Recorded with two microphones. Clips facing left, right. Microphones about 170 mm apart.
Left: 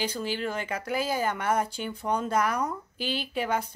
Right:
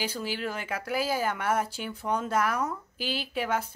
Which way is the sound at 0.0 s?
5° right (ahead or behind).